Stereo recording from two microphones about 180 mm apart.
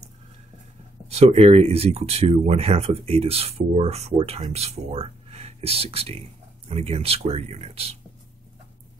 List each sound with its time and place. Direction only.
1.0 s speech: 35° right (ahead or behind)